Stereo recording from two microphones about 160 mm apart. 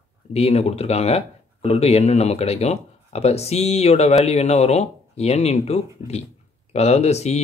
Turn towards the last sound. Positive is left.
turn(degrees=40)  # may be behind; listen again after turning